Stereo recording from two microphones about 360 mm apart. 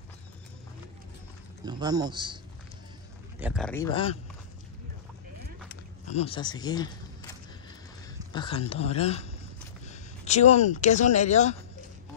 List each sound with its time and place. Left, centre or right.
1.7 s speech: centre
3.3 s speech: centre
6.1 s speech: centre
8.3 s speech: centre